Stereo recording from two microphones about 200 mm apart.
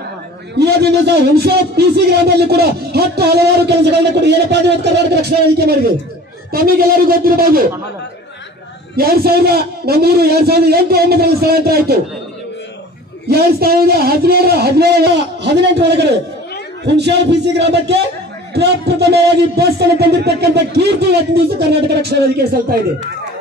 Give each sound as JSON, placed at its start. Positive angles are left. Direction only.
{"t": 0.6, "sound": "a man's voice", "side_deg": -55}
{"t": 8.9, "sound": "a man's voice", "side_deg": -50}
{"t": 13.3, "sound": "a man's voice", "side_deg": -50}